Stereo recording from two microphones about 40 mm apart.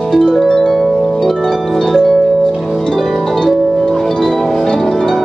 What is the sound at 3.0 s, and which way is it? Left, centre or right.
Harp, centre.